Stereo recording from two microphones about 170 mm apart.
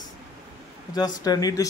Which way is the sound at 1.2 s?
20° left (ahead or behind).